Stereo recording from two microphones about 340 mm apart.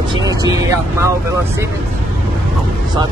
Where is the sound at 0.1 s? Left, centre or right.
Centre.